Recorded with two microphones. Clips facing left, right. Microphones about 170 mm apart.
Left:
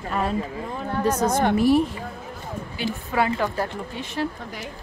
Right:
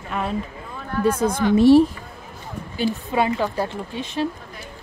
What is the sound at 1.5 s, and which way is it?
Speech, 25° right (ahead or behind).